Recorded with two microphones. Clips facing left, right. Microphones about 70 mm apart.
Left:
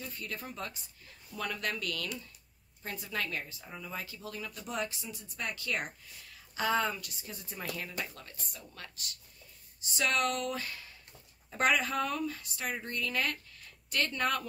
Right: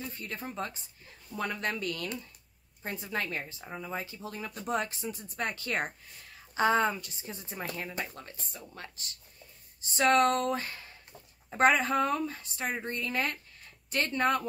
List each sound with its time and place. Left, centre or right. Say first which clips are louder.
0.0 s a woman's voice: right 2 dB; right